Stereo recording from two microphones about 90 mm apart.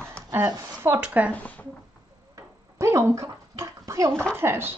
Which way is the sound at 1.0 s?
15° right (ahead or behind).